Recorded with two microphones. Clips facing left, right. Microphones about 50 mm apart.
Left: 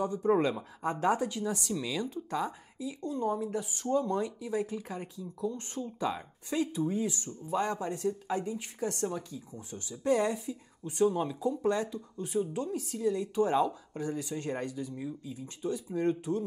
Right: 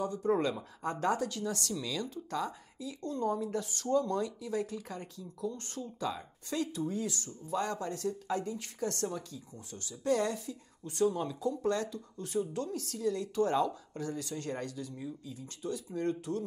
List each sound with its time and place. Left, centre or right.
0.0 s speech: left